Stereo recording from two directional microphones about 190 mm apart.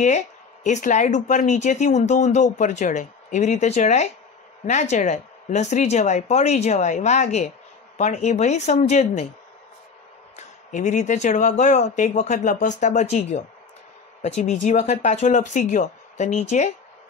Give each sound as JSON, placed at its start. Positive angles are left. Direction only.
{"t": 0.7, "sound": "speech", "side_deg": 40}
{"t": 10.3, "sound": "speech", "side_deg": 40}